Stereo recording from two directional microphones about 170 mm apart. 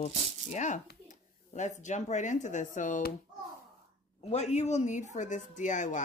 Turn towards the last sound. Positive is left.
turn(degrees=45)  # may be behind; listen again after turning